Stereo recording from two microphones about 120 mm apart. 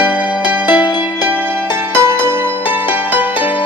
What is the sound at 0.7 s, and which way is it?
Music, 40° left (ahead or behind).